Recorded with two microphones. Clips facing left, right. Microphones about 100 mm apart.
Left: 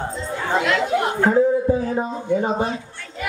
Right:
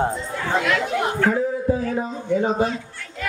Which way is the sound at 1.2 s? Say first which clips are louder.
Left 7 dB; 20° left (ahead or behind).